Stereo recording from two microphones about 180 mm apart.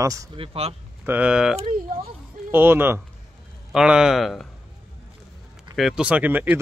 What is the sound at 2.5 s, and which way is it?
Speech, 10° right (ahead or behind).